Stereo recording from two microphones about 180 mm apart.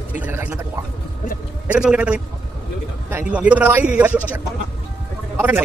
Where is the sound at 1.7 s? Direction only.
5° right (ahead or behind).